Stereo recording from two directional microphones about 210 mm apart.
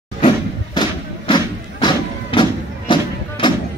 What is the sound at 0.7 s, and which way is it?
Thump, 20° left (ahead or behind).